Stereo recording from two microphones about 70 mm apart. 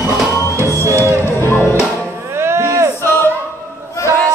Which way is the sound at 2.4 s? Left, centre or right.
Right.